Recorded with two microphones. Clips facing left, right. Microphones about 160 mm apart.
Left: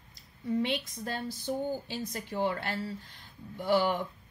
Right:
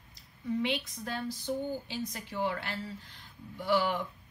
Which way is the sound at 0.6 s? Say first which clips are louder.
Left 1 dB; 45° left (ahead or behind).